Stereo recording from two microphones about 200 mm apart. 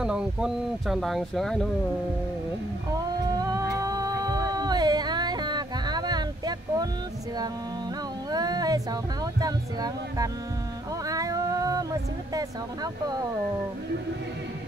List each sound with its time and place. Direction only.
0.0 s speech: 5° right (ahead or behind)
3.3 s music: 20° right (ahead or behind)
8.3 s speech: 20° right (ahead or behind)